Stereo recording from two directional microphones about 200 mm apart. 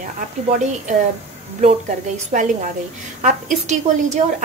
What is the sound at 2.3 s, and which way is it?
Speech, 40° right (ahead or behind).